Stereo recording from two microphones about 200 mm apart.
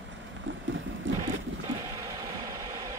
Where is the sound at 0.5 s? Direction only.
70° right (ahead or behind).